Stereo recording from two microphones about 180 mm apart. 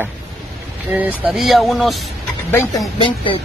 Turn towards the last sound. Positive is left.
turn(degrees=25)  # may be behind; listen again after turning